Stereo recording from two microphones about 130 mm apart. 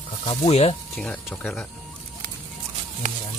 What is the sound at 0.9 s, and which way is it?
Speech, 10° left (ahead or behind).